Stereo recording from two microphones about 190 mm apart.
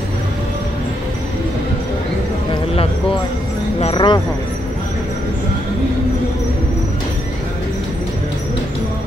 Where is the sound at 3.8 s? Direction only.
25° left (ahead or behind).